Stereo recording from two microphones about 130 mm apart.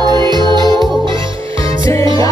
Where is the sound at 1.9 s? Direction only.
25° left (ahead or behind).